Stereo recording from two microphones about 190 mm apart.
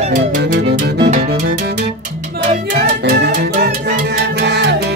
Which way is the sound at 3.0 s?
60° right (ahead or behind).